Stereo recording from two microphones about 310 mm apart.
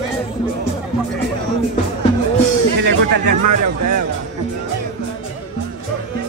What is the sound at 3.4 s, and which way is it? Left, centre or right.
Speech, right.